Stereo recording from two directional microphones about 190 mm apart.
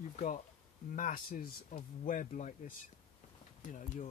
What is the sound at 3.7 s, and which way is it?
Speech, 40° left (ahead or behind).